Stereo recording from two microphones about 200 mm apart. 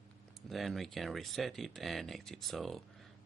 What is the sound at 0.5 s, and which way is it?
Speech, centre (ahead or behind).